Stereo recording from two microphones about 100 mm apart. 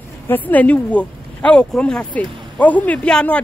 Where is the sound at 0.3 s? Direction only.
15° left (ahead or behind).